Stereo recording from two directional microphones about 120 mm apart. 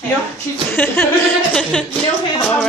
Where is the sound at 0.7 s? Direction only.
20° left (ahead or behind).